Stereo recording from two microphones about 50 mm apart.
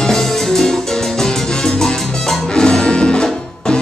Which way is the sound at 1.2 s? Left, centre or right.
Centre.